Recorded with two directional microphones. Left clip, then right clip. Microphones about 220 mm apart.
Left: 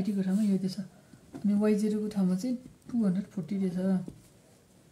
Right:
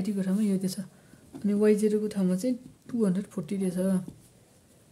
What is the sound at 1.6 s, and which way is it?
Speech, 40° right (ahead or behind).